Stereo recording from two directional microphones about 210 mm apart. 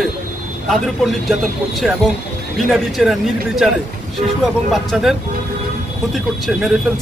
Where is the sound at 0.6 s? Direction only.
Centre (ahead or behind).